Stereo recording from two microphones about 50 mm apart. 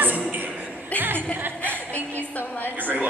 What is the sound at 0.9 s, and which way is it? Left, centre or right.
Music, right.